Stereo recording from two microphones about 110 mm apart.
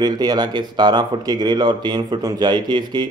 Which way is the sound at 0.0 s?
40° right (ahead or behind).